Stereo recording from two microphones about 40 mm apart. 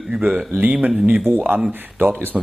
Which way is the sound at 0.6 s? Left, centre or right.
Right.